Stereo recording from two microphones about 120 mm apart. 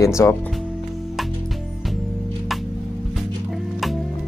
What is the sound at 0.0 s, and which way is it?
Speech, 20° left (ahead or behind).